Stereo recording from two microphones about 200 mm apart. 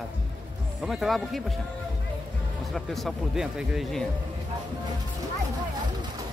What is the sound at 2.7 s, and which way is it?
Speech, centre (ahead or behind).